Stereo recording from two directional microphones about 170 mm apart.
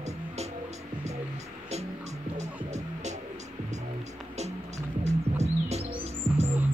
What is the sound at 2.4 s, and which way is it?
Music, 40° right (ahead or behind).